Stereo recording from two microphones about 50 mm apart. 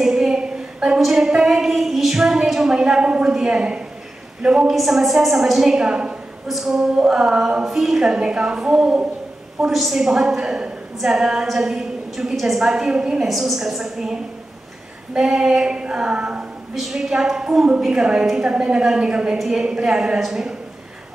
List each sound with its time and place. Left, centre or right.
0.0 s a sound: centre
4.4 s a woman's voice: centre
5.9 s a woman's voice: centre
6.4 s a woman's voice: centre
9.7 s a woman's voice: centre
13.2 s a woman's voice: centre; by 16.4 s right
16.9 s a woman's voice: centre
19.3 s a woman's voice: centre
19.6 s a woman's voice: centre
20.2 s a woman's voice: centre